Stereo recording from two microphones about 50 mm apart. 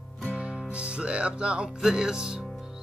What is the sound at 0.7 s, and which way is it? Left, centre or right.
Speech, right.